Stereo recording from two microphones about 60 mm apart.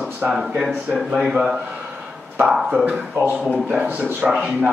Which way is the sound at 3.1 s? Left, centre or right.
Right.